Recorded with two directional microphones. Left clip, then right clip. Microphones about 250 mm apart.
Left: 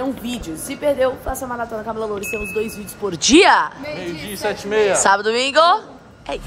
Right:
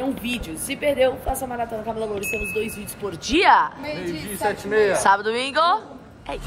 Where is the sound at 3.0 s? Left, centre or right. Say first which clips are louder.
Left 6 dB; left.